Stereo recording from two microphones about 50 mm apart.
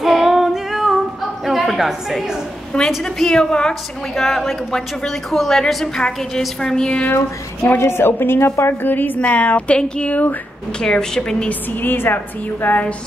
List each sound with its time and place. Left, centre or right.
0.0 s female singing: centre
1.4 s music: centre
3.0 s a woman's voice: centre
4.1 s a woman's voice: centre
7.2 s a woman's voice: left
8.9 s a woman's voice: left
9.8 s a woman's voice: centre
11.7 s a woman's voice: left
12.6 s a woman's voice: left